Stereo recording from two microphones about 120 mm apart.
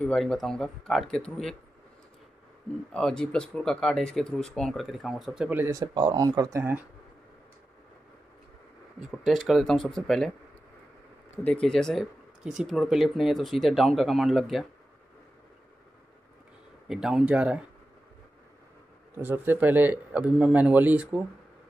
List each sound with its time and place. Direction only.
0.0 s speech: 5° left (ahead or behind)
2.9 s speech: 5° left (ahead or behind); by 5.7 s 10° right (ahead or behind)
5.7 s speech: 30° right (ahead or behind)
9.2 s speech: centre (ahead or behind)
11.4 s speech: 10° left (ahead or behind)
16.8 s a man's voice: 5° right (ahead or behind)
19.1 s a man's voice: 15° right (ahead or behind)